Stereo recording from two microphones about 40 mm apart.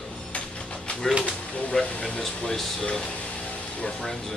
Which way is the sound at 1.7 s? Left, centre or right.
Left.